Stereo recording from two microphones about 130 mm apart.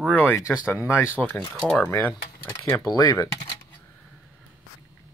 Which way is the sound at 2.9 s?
30° left (ahead or behind).